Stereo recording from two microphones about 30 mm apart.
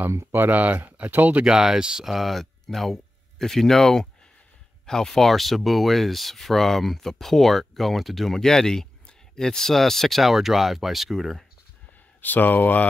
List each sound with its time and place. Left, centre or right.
0.5 s speech: right
0.9 s speech: right
1.4 s speech: centre
2.0 s speech: centre
5.1 s speech: centre
8.4 s speech: centre
10.2 s speech: centre
12.2 s speech: left